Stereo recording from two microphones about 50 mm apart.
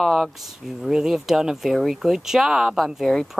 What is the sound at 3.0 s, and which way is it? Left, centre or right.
Speech, centre.